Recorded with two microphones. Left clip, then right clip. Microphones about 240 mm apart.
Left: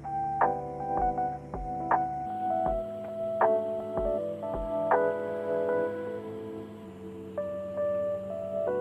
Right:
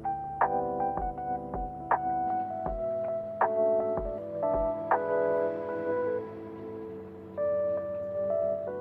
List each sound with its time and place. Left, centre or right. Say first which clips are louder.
0.4 s music: right 3 dB; centre
3.3 s music: even; centre